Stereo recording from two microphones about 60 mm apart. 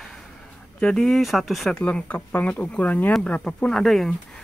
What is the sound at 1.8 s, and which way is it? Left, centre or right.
Speech, left.